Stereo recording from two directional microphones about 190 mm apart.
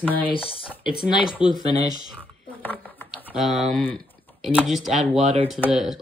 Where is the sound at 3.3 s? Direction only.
Centre (ahead or behind).